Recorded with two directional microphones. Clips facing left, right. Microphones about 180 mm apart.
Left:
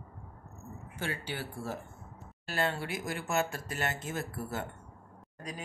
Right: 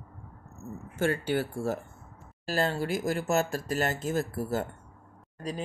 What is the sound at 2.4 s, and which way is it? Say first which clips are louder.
Speech: right 5 dB; 35° right (ahead or behind).